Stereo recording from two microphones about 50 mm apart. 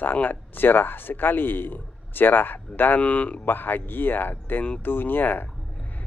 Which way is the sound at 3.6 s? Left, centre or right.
Left.